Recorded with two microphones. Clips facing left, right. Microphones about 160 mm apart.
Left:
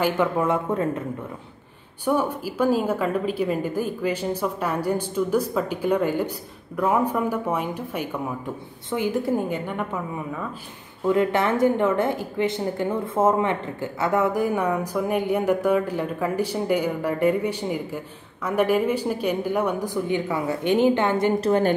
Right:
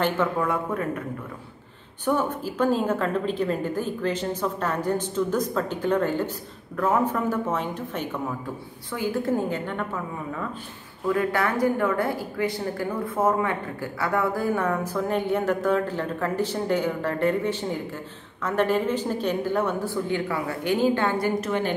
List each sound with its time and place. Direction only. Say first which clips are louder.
0.0 s speech: left 2 dB; 20° left (ahead or behind)
2.0 s a woman's voice: left 1 dB; 10° left (ahead or behind)
11.1 s a woman's voice: left 3 dB; 20° left (ahead or behind)
21.4 s a woman's voice: left 6 dB; 40° left (ahead or behind)